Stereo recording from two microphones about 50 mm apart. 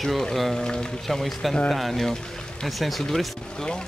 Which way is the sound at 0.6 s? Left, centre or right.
Centre.